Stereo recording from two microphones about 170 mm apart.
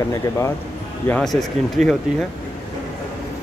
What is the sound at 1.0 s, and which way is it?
Speech, 5° left (ahead or behind).